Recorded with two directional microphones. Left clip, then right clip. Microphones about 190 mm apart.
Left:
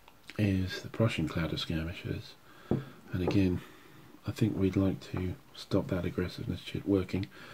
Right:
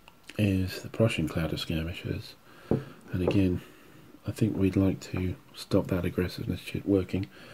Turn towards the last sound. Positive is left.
turn(degrees=-5)  # may be behind; listen again after turning